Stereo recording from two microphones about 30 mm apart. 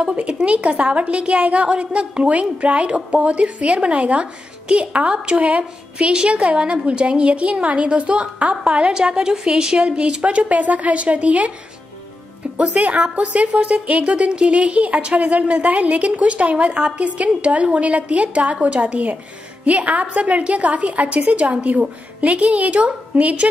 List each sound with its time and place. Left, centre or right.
0.0 s a woman's voice: right
2.2 s a woman's voice: right
9.8 s a woman's voice: right
12.5 s a woman's voice: right